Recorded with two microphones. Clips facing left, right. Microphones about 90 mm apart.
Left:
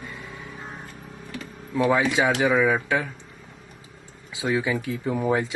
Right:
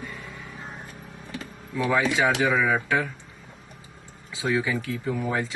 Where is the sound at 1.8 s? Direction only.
20° left (ahead or behind).